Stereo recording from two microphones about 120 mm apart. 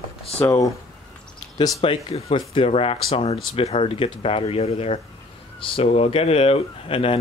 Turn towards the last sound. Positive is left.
turn(degrees=50)  # may be behind; listen again after turning